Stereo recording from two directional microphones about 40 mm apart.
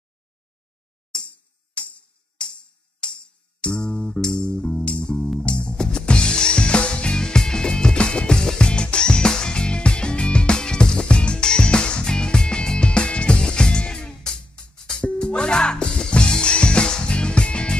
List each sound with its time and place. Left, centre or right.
1.8 s music: left
3.0 s music: left